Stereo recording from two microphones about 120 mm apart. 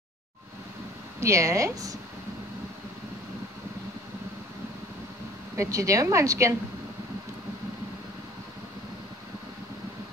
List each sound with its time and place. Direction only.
1.2 s a woman's voice: 25° right (ahead or behind)
5.6 s a woman's voice: 25° right (ahead or behind)